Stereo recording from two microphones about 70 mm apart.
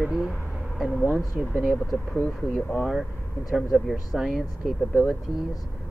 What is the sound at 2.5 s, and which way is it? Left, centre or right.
Speech, centre.